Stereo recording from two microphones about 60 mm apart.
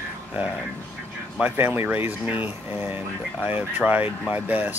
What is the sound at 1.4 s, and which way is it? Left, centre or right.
Speech, right.